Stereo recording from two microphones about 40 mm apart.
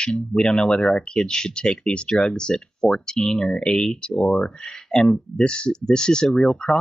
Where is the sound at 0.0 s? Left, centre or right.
Left.